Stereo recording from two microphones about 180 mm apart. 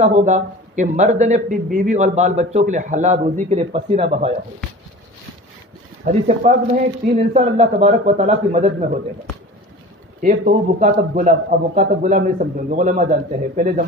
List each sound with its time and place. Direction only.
0.0 s a man's voice: 40° right (ahead or behind)
6.0 s a man's voice: 45° right (ahead or behind)
10.2 s a man's voice: 50° right (ahead or behind)